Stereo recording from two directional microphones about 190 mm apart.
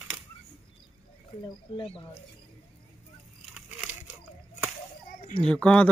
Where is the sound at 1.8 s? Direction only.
30° left (ahead or behind).